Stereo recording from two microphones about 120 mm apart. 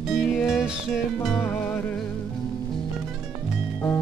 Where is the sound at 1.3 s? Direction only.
15° left (ahead or behind).